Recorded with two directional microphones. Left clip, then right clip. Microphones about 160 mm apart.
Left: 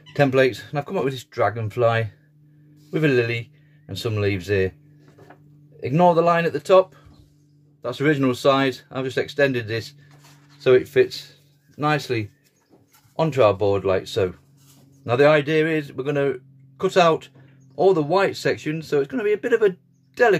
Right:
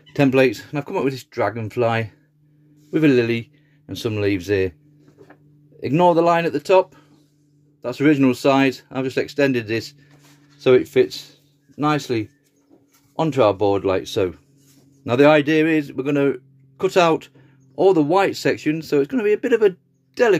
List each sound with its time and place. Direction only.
0.1 s a man's voice: 40° right (ahead or behind)
5.8 s a man's voice: 35° right (ahead or behind)